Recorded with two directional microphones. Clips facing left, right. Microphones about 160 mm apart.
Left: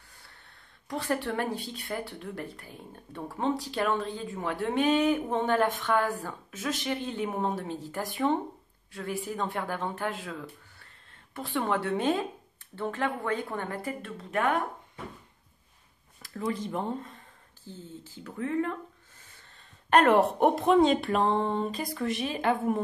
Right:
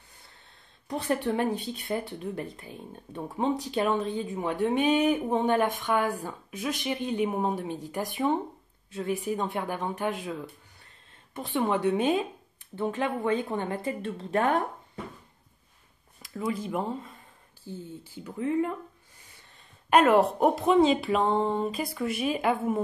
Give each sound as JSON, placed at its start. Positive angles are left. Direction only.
{"t": 0.8, "sound": "speech", "side_deg": -20}
{"t": 11.3, "sound": "a woman's voice", "side_deg": -20}
{"t": 16.2, "sound": "speech", "side_deg": -10}
{"t": 19.9, "sound": "speech", "side_deg": -5}